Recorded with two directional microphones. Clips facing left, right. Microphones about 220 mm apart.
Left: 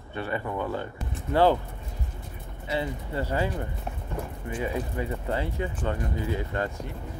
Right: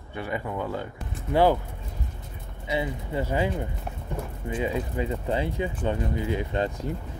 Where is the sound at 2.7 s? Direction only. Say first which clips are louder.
Right 1 dB; 15° right (ahead or behind).